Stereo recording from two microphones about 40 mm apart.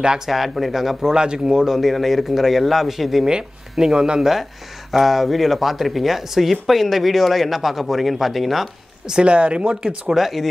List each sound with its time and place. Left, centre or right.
0.3 s speech: centre
1.1 s speech: right
1.8 s speech: centre
4.9 s speech: centre
9.0 s speech: right
10.2 s speech: centre